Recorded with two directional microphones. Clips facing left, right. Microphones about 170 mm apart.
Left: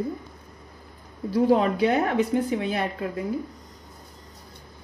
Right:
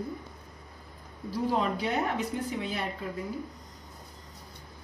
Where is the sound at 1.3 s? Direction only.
65° left (ahead or behind).